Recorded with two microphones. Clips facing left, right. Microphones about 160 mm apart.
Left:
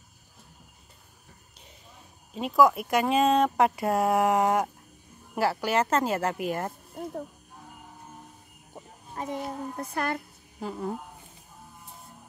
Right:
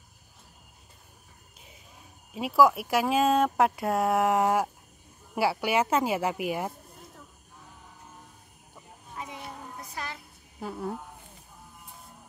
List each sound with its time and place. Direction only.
2.3 s speech: 5° right (ahead or behind)
9.1 s a sound: 45° left (ahead or behind)
9.8 s a woman's voice: 60° left (ahead or behind)
10.6 s speech: 5° right (ahead or behind)